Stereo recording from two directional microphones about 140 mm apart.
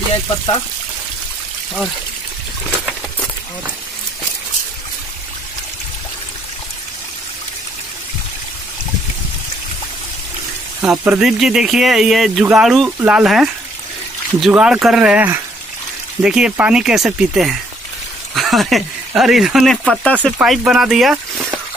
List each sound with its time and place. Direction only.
10.8 s speech: 10° right (ahead or behind)